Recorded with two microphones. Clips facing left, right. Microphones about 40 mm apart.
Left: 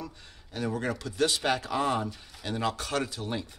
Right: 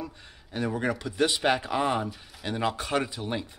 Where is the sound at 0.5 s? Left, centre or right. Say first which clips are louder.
Right 3 dB; centre.